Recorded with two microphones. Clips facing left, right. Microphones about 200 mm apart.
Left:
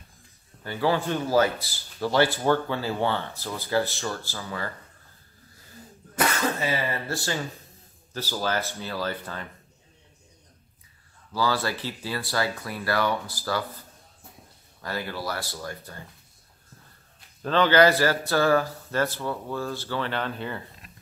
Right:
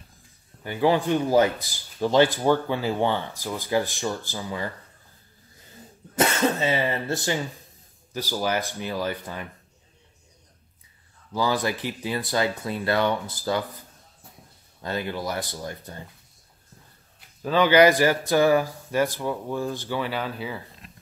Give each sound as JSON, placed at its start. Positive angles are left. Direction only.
{"t": 0.7, "sound": "speech", "side_deg": -15}
{"t": 6.1, "sound": "speech", "side_deg": -25}
{"t": 11.3, "sound": "speech", "side_deg": -15}
{"t": 14.8, "sound": "speech", "side_deg": -20}
{"t": 17.4, "sound": "speech", "side_deg": -10}